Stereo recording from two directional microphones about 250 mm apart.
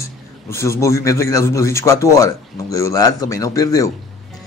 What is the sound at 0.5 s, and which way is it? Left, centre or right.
Speech, centre.